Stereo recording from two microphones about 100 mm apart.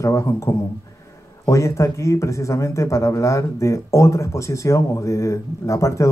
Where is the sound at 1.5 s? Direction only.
30° left (ahead or behind).